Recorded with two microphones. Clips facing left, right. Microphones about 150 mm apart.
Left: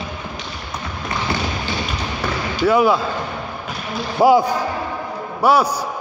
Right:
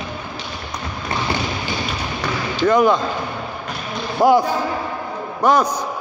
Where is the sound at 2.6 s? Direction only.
5° left (ahead or behind).